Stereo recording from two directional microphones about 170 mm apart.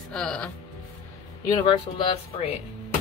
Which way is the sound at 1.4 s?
25° left (ahead or behind).